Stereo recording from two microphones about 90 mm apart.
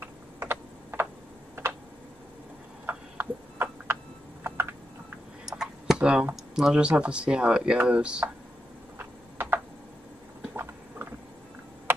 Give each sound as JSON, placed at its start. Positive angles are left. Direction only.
{"t": 0.0, "sound": "computer keyboard", "side_deg": -25}
{"t": 2.9, "sound": "a sound", "side_deg": -20}
{"t": 5.4, "sound": "computer keyboard", "side_deg": -5}
{"t": 6.3, "sound": "speech", "side_deg": -5}
{"t": 8.9, "sound": "a sound", "side_deg": -20}
{"t": 10.5, "sound": "clip-clop", "side_deg": -25}